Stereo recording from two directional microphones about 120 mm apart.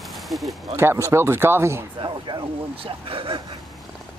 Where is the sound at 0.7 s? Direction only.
25° right (ahead or behind).